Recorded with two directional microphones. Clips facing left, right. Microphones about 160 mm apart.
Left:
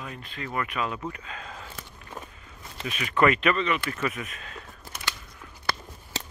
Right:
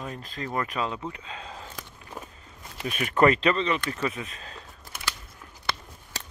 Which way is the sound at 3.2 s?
30° right (ahead or behind).